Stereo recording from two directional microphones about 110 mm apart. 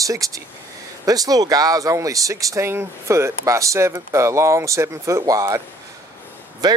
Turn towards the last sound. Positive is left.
turn(degrees=-35)  # may be behind; listen again after turning